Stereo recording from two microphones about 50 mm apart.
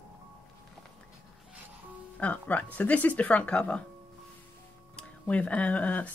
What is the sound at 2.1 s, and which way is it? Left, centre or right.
Speech, left.